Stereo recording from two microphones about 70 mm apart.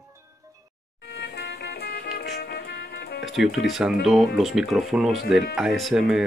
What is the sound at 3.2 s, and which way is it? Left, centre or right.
Speech, centre.